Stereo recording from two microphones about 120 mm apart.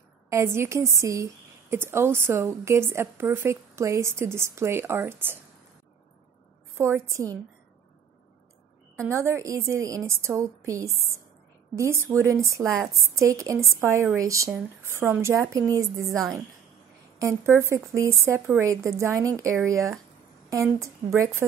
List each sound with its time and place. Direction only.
0.3 s a woman's voice: 20° right (ahead or behind)
6.8 s a woman's voice: 25° right (ahead or behind)
8.9 s a woman's voice: 20° right (ahead or behind)
17.2 s a woman's voice: 25° right (ahead or behind)
21.0 s a woman's voice: 15° right (ahead or behind)